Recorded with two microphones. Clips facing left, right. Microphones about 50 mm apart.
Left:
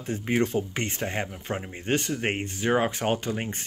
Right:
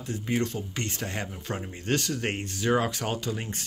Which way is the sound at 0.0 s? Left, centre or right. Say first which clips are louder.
Left 3 dB; left.